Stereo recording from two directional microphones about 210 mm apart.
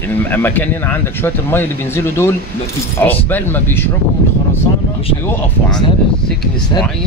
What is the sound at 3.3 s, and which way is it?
Speech, 10° left (ahead or behind).